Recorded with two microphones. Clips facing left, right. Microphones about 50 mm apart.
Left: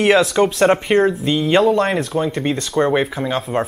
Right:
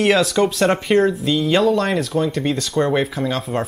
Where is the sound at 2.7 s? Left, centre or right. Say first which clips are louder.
Left 2 dB; centre.